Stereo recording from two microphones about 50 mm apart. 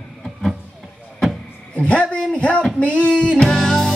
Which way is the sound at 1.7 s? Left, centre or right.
Left.